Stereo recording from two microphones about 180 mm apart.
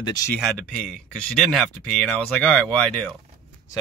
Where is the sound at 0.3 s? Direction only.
Centre (ahead or behind).